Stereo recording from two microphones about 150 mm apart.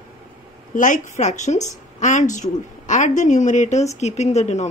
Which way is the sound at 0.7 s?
60° left (ahead or behind).